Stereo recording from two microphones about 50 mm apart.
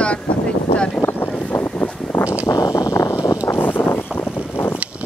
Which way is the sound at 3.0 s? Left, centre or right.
Left.